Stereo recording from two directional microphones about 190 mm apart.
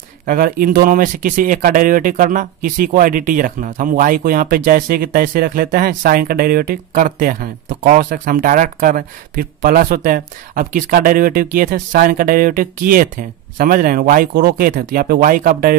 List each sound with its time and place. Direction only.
0.3 s speech: 50° right (ahead or behind)